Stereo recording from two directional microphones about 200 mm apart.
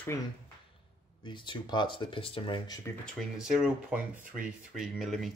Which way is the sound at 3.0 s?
Centre (ahead or behind).